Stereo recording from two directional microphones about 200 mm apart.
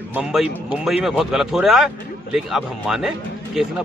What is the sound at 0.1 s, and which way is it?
Speech, 5° right (ahead or behind).